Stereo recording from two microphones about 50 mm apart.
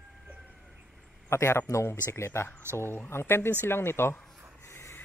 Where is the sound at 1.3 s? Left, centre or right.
Left.